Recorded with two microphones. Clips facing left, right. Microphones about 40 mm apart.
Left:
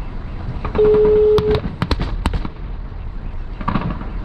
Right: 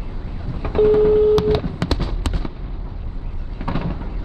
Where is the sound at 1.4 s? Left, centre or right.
Centre.